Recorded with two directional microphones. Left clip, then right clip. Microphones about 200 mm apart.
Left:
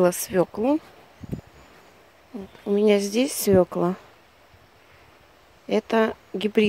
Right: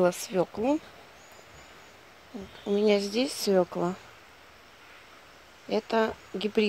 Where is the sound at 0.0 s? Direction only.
30° left (ahead or behind).